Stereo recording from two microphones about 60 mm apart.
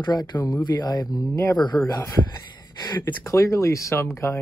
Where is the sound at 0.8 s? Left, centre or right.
Left.